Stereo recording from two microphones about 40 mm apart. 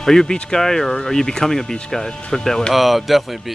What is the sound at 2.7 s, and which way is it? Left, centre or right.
Speech, centre.